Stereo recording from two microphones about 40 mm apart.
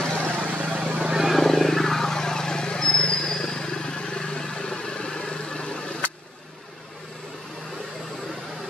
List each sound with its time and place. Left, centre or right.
0.3 s vehicle: right
0.9 s vehicle: centre
1.3 s vehicle: centre